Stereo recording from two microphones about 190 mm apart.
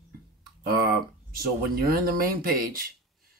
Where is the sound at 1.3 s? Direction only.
50° right (ahead or behind).